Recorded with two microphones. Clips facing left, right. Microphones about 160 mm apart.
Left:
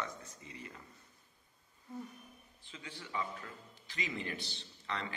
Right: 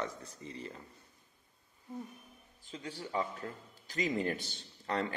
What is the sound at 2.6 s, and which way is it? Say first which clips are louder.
A man's voice: right 7 dB; 40° right (ahead or behind).